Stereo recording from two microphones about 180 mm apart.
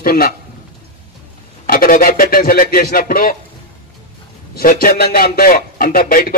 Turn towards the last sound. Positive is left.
turn(degrees=50)  # may be behind; listen again after turning